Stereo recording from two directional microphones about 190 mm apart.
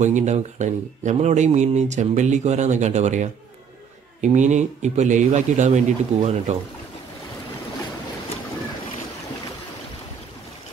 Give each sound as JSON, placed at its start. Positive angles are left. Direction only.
{"t": 0.0, "sound": "speech", "side_deg": -40}